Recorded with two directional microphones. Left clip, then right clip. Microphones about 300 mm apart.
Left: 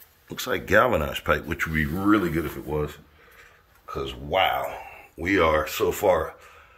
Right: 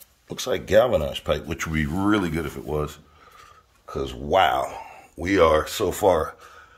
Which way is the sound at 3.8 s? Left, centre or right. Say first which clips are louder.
Right 2 dB; right.